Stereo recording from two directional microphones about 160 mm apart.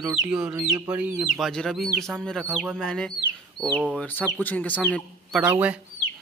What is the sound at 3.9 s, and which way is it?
Speech, 10° left (ahead or behind).